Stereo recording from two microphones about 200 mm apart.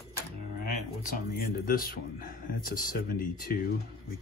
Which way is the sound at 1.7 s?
45° left (ahead or behind).